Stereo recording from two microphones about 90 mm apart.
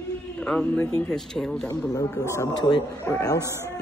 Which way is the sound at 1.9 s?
40° left (ahead or behind).